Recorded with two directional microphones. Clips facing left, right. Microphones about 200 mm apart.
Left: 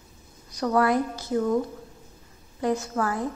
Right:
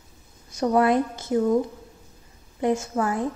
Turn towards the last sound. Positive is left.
turn(degrees=-20)  # may be behind; listen again after turning